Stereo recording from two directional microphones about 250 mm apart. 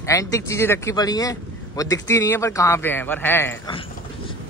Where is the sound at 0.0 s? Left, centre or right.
Centre.